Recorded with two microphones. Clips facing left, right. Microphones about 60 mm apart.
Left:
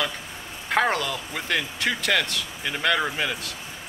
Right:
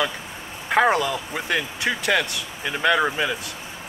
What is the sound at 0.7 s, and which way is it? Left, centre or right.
Speech, centre.